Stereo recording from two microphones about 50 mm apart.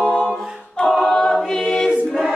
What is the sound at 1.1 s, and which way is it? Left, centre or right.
Choir, centre.